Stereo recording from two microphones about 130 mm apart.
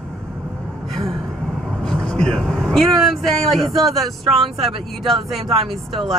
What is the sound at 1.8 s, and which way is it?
Speech, 5° left (ahead or behind).